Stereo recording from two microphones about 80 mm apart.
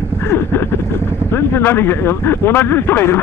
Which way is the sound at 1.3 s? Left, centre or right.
Left.